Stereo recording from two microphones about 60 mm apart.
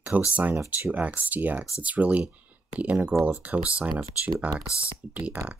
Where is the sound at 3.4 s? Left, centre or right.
Right.